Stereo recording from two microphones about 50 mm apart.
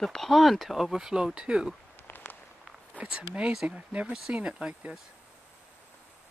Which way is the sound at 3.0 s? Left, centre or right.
Right.